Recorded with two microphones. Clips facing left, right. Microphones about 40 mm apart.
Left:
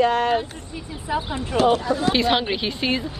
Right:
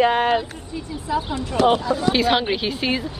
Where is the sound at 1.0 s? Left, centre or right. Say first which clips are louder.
Right 1 dB; left.